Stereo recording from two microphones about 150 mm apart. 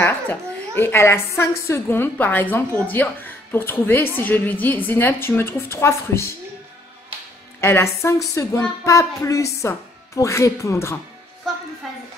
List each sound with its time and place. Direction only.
0.0 s a woman's voice: 15° left (ahead or behind)
7.6 s a woman's voice: 20° left (ahead or behind)